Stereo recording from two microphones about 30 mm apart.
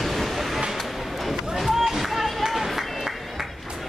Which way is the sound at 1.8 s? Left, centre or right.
Centre.